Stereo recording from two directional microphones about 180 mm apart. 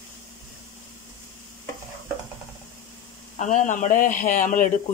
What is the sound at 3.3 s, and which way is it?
Speech, 45° left (ahead or behind).